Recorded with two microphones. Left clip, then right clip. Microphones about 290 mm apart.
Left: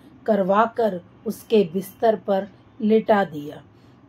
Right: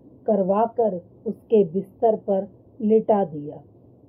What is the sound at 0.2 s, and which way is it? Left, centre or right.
Speech, centre.